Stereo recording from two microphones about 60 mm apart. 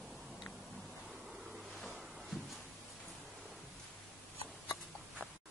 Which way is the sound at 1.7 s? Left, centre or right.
Centre.